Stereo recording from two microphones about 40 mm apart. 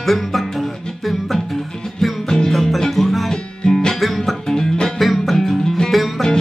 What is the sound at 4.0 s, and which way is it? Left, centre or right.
Music, centre.